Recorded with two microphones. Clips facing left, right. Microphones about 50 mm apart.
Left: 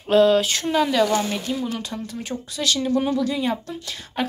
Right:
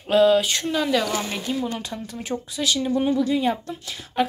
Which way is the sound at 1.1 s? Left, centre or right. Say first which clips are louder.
Left 3 dB; centre.